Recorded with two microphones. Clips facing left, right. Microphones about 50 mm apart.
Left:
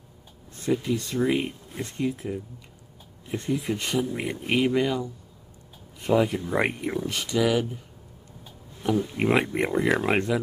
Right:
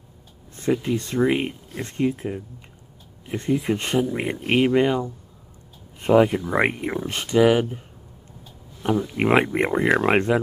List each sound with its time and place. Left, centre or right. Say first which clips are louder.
0.6 s speech: right 3 dB; right
9.1 s speech: right 4 dB; right